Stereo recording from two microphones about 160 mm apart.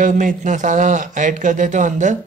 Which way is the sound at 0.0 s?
50° right (ahead or behind).